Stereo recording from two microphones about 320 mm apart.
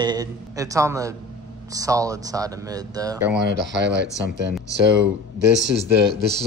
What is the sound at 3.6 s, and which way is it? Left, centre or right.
Speech, right.